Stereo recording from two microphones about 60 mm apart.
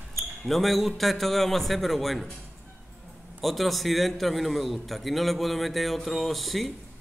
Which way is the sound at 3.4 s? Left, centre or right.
Centre.